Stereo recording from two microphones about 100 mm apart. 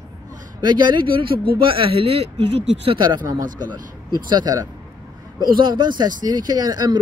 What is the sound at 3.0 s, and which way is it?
Speech, 35° right (ahead or behind).